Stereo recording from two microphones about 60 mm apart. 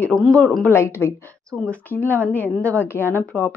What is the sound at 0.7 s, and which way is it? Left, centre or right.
Speech, left.